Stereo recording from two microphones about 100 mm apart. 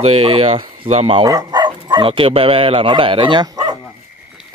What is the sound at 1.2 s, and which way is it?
Speech, 45° right (ahead or behind).